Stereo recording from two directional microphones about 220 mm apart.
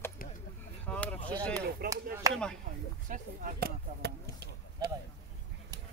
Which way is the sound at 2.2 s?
15° right (ahead or behind).